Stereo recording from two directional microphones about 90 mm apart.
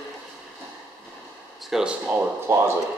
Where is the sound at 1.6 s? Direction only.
5° right (ahead or behind).